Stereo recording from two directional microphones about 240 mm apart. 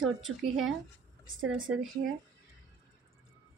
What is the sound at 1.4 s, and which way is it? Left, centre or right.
Speech, right.